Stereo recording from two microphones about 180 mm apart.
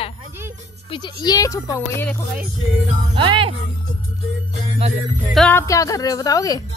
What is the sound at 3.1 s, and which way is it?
Speech, 30° right (ahead or behind).